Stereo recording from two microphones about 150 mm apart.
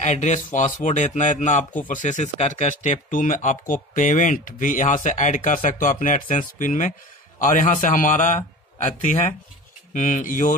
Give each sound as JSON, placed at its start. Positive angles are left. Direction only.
{"t": 0.0, "sound": "speech", "side_deg": 50}
{"t": 9.9, "sound": "speech", "side_deg": 60}